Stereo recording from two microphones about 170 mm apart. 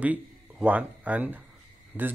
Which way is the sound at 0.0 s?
10° right (ahead or behind).